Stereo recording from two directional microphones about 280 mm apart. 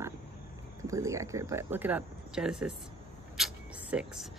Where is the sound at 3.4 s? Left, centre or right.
Centre.